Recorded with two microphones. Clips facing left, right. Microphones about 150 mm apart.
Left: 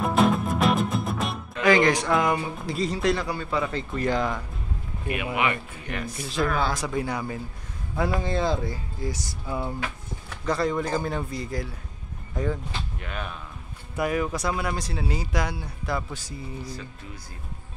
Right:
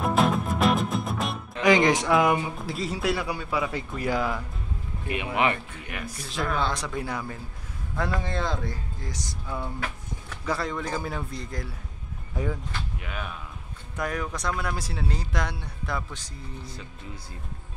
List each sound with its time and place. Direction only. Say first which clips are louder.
0.0 s music: left 2 dB; centre (ahead or behind)
1.6 s a man's voice: even; 20° right (ahead or behind)
2.0 s a man's voice: right 1 dB; 5° right (ahead or behind)
5.9 s speech: left 5 dB; 5° right (ahead or behind)
12.4 s a man's voice: left 2 dB; 10° right (ahead or behind)
16.6 s speech: left 3 dB; 25° right (ahead or behind)